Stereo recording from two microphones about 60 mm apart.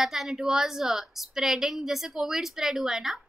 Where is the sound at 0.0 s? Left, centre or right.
Centre.